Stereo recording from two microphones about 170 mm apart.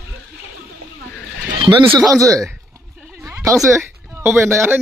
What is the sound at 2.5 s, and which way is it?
Bleat, 5° right (ahead or behind).